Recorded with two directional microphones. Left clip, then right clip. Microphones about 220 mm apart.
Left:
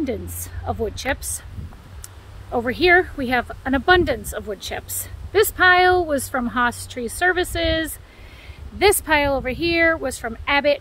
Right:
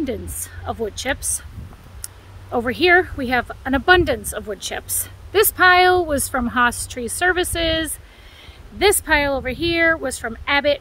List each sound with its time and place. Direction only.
0.7 s speech: 5° right (ahead or behind)
2.5 s speech: 20° right (ahead or behind)
8.7 s speech: centre (ahead or behind)